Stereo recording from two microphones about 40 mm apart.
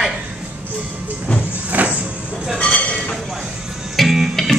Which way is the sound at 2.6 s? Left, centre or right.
Left.